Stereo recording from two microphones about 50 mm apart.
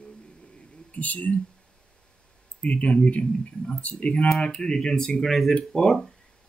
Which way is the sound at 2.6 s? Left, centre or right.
Left.